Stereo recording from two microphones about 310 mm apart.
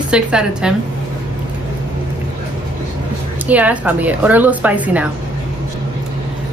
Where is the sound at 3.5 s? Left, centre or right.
Centre.